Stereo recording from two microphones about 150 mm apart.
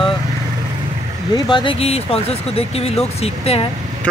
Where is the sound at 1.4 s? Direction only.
35° left (ahead or behind).